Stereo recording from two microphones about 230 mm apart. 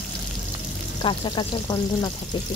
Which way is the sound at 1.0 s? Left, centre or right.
Centre.